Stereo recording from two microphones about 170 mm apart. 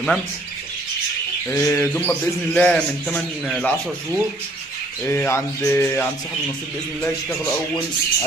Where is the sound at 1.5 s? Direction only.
15° left (ahead or behind).